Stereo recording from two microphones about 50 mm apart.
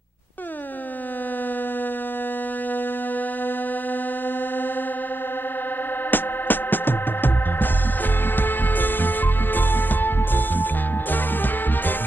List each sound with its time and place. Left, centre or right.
6.1 s music: left